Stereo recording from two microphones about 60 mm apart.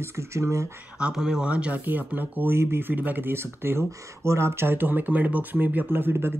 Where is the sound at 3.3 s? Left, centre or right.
Right.